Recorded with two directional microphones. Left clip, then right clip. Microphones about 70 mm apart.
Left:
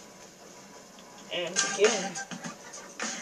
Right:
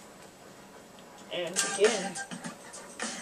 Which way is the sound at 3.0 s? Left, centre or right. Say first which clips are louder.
Left 2 dB; left.